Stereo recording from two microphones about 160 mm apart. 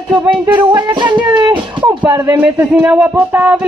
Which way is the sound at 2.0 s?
10° right (ahead or behind).